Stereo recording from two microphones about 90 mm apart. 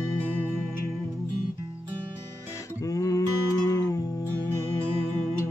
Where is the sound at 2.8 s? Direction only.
40° left (ahead or behind).